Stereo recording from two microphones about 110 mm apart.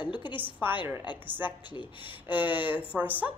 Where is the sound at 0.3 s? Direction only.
15° right (ahead or behind).